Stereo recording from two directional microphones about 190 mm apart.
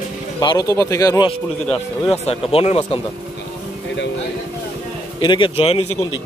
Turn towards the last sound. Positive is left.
turn(degrees=30)  # may be behind; listen again after turning